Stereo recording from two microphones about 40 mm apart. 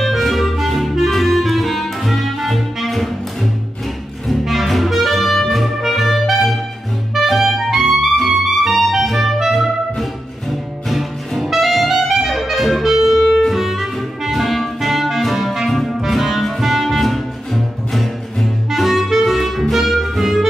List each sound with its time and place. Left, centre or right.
0.0 s clarinet: centre
4.3 s music: centre
5.8 s clarinet: centre
10.9 s music: centre
18.7 s clarinet: centre
19.7 s music: centre